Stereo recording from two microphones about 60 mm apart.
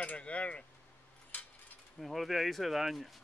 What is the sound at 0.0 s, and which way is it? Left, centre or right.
Speech, left.